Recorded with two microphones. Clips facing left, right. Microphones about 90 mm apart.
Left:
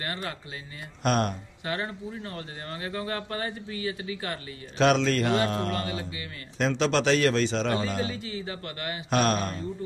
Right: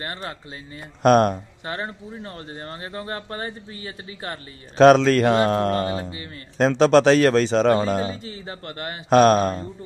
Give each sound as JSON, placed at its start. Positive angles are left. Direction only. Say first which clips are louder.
{"t": 0.0, "sound": "speech", "louder": "right 2 dB", "side_deg": -30}
{"t": 1.0, "sound": "speech", "louder": "right 10 dB", "side_deg": -50}
{"t": 1.6, "sound": "speech", "louder": "right 1 dB", "side_deg": -30}